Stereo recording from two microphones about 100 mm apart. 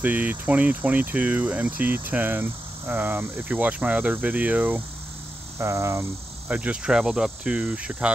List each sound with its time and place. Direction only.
0.0 s speech: 15° right (ahead or behind)
5.6 s speech: 25° right (ahead or behind)
6.5 s speech: 10° right (ahead or behind)